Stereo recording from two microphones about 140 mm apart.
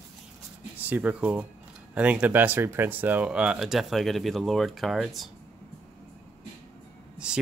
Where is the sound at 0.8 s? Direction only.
10° right (ahead or behind).